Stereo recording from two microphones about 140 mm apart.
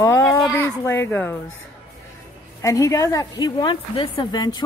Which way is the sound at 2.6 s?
20° left (ahead or behind).